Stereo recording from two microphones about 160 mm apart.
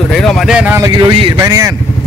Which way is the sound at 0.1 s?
5° left (ahead or behind).